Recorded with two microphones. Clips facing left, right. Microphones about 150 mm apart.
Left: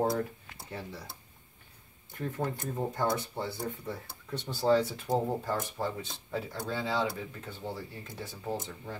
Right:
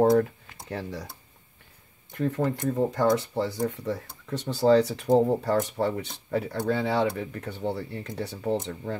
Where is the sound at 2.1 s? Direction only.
90° right.